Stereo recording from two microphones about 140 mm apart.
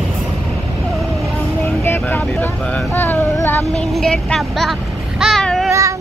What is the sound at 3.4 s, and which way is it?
Child singing, 15° left (ahead or behind).